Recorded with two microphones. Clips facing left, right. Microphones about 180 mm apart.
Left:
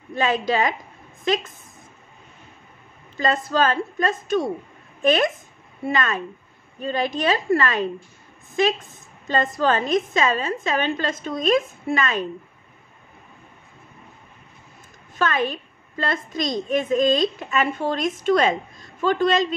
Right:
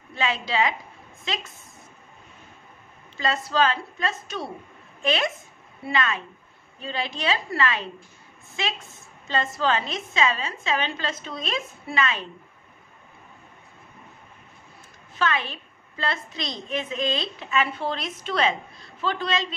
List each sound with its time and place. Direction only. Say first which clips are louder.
0.1 s a woman's voice: left 5 dB; 45° left (ahead or behind)
3.2 s a woman's voice: left 3 dB; 45° left (ahead or behind)
9.6 s a woman's voice: left 7 dB; 45° left (ahead or behind)
15.1 s a woman's voice: left 4 dB; 45° left (ahead or behind)